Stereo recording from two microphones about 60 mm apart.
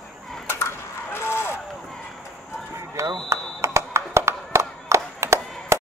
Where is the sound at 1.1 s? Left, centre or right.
Left.